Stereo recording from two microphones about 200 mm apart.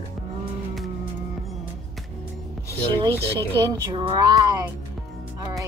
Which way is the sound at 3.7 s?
20° right (ahead or behind).